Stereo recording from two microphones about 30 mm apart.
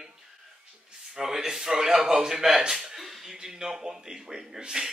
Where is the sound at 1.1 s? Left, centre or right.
Centre.